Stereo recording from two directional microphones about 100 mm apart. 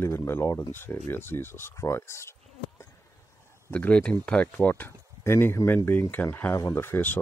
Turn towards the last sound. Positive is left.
turn(degrees=20)  # may be behind; listen again after turning